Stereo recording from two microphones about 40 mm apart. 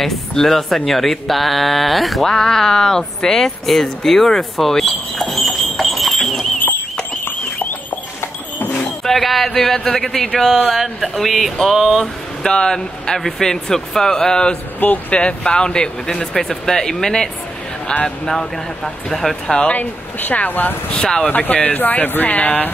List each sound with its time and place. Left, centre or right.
0.0 s speech: centre
2.2 s speech: centre
9.0 s speech: centre
9.5 s speech: centre
12.4 s speech: centre
14.8 s speech: left
15.1 s speech: left; by 19.3 s centre
19.4 s speech: left
19.7 s speech: left
20.9 s speech: left
21.3 s speech: left